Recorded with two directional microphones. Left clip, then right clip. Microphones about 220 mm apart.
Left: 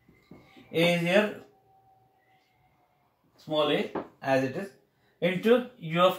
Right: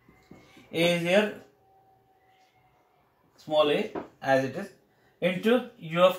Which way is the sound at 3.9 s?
10° left (ahead or behind).